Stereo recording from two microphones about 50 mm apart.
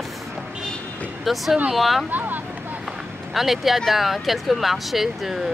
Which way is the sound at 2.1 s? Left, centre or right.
Right.